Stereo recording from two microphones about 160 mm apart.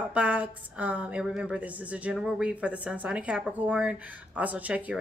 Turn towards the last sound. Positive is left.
turn(degrees=-10)  # may be behind; listen again after turning